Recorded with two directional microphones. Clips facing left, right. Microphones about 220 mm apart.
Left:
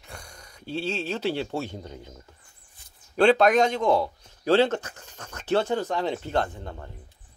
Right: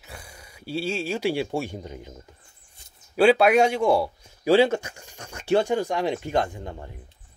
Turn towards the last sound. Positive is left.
turn(degrees=-15)  # may be behind; listen again after turning